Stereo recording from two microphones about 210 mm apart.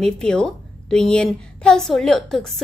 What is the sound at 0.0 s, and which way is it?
A woman's voice, 5° left (ahead or behind).